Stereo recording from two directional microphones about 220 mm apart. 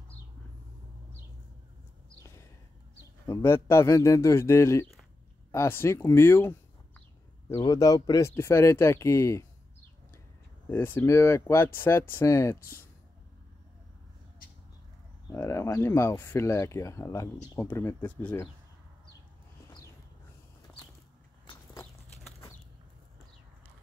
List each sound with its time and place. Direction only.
3.3 s speech: 10° left (ahead or behind)
10.7 s speech: 10° left (ahead or behind)
15.3 s speech: 10° left (ahead or behind)
21.5 s a sound: 20° left (ahead or behind)